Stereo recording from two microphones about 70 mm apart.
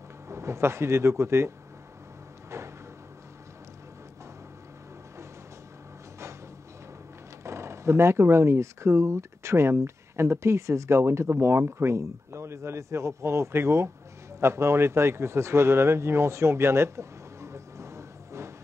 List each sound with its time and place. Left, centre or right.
0.3 s speech: right
2.5 s cupboard open or close: right
7.4 s speech: right